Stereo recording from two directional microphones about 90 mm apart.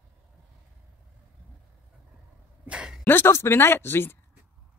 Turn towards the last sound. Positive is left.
turn(degrees=25)  # may be behind; listen again after turning